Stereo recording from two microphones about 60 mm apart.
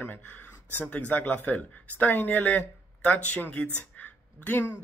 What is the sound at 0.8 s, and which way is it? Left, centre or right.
Speech, left.